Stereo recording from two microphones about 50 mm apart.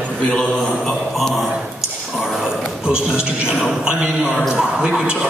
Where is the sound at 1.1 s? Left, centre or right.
Centre.